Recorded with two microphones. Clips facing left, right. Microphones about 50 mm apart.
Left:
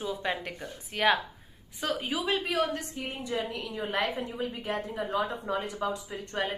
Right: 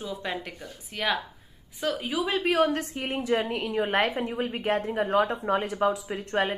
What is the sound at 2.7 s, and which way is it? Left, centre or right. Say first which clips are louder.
Speech: right 6 dB; right.